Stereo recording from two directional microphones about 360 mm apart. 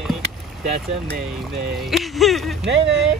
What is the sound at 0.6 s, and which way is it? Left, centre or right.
Speech, right.